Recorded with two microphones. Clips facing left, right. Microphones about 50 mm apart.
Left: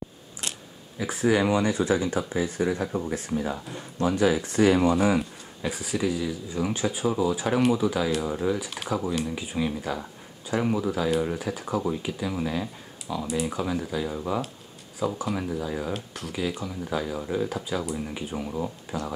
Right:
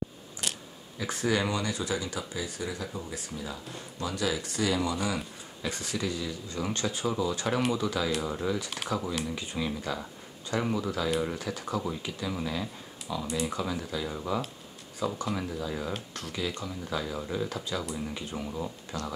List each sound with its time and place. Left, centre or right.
0.9 s speech: centre; by 5.7 s left
5.7 s speech: centre